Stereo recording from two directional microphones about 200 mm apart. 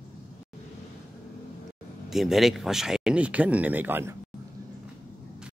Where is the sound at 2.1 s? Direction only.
Centre (ahead or behind).